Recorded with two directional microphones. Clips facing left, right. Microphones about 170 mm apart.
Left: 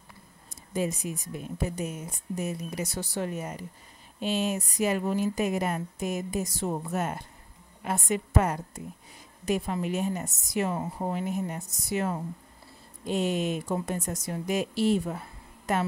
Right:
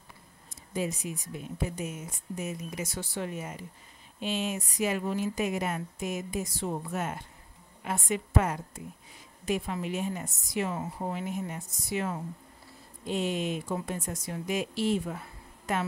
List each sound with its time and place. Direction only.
0.7 s speech: 45° left (ahead or behind)